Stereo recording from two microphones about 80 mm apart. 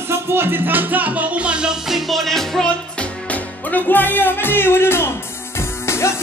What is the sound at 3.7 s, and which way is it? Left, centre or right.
Music, left.